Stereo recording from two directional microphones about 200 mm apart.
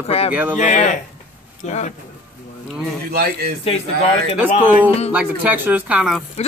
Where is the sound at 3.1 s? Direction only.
50° right (ahead or behind).